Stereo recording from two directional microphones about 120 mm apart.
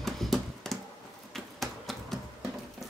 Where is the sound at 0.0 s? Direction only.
Centre (ahead or behind).